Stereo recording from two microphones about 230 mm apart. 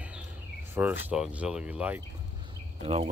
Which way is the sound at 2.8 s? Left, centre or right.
Right.